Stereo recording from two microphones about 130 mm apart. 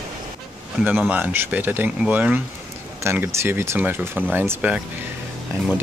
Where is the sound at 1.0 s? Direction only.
15° right (ahead or behind).